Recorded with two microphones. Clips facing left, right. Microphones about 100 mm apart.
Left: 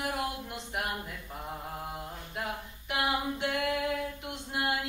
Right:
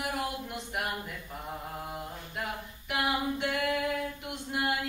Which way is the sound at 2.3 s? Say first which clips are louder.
Left 1 dB; 20° left (ahead or behind).